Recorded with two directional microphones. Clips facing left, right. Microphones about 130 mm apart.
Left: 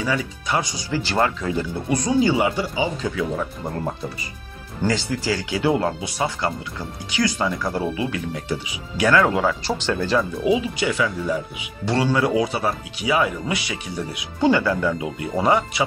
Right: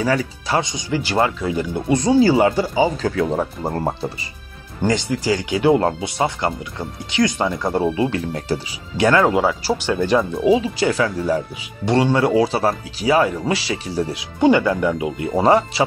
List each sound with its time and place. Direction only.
0.0 s speech: 40° right (ahead or behind)
0.6 s speech: 20° right (ahead or behind)
1.9 s speech: 25° right (ahead or behind)
4.8 s speech: 20° right (ahead or behind)
9.4 s speech: 10° right (ahead or behind)
10.4 s speech: 35° right (ahead or behind)
11.8 s speech: 20° right (ahead or behind)
14.4 s speech: 20° right (ahead or behind)